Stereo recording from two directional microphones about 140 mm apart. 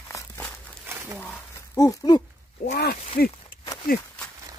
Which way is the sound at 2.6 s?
90° left.